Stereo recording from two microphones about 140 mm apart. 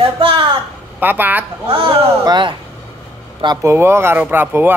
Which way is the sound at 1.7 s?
40° right (ahead or behind).